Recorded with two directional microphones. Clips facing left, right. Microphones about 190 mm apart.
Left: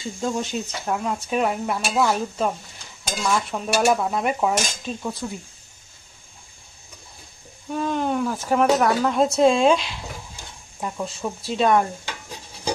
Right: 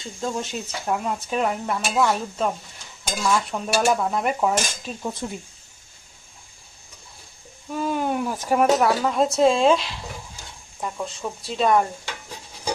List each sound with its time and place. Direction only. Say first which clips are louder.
0.0 s speech: left 2 dB; centre (ahead or behind)
5.2 s speech: even; 20° right (ahead or behind)
7.7 s a sound: left 1 dB; 5° right (ahead or behind)
8.7 s speech: left 1 dB; centre (ahead or behind)